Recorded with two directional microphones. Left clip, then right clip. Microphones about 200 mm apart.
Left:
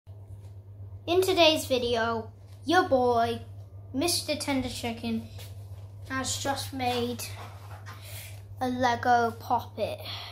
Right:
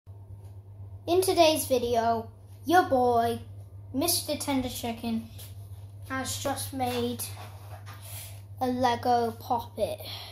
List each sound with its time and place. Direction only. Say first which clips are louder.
1.0 s a woman's voice: even; centre (ahead or behind)
6.0 s a woman's voice: left 1 dB; 20° left (ahead or behind)
8.0 s a sound: left 1 dB; centre (ahead or behind)
8.7 s a woman's voice: left 2 dB; 5° right (ahead or behind)